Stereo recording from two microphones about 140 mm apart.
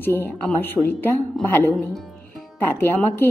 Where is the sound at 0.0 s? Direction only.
15° left (ahead or behind).